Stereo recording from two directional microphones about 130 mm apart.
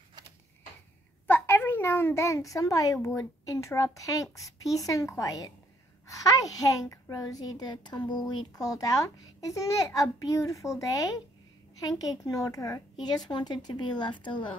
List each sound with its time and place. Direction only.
1.2 s a child's voice: 15° left (ahead or behind); by 14.4 s 35° left (ahead or behind)